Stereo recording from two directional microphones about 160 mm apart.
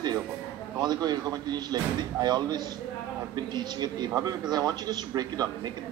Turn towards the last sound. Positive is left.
turn(degrees=-25)  # may be behind; listen again after turning